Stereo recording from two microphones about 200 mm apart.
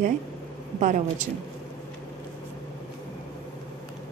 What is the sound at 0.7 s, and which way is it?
Speech, 40° right (ahead or behind).